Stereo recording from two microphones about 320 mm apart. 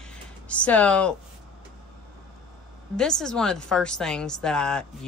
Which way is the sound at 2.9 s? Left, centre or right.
Centre.